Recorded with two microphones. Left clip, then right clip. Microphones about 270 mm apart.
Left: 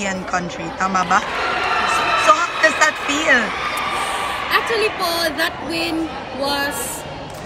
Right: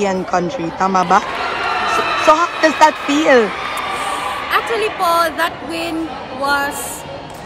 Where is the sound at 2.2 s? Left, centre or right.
Right.